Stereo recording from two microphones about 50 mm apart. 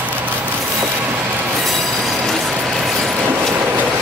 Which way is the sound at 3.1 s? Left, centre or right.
Right.